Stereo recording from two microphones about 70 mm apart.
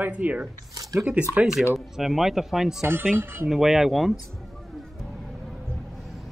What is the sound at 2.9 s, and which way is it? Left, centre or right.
Speech, right.